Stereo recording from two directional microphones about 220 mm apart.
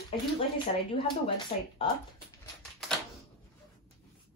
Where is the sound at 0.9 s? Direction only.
25° left (ahead or behind).